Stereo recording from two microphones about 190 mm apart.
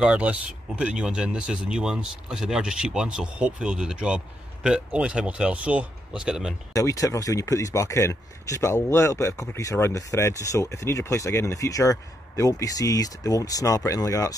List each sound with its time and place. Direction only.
0.0 s speech: 5° right (ahead or behind)
6.7 s speech: 15° left (ahead or behind)